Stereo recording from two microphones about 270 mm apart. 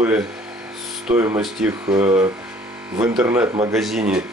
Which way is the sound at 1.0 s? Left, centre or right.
Centre.